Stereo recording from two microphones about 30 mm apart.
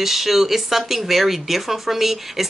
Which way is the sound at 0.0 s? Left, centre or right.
Centre.